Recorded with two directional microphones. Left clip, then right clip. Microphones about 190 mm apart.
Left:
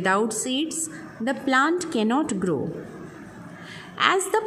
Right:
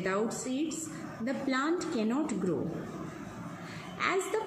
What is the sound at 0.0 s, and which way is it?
A woman's voice, 50° left (ahead or behind).